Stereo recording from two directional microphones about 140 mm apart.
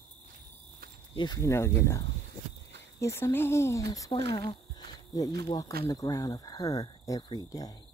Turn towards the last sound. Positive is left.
turn(degrees=30)  # may be behind; listen again after turning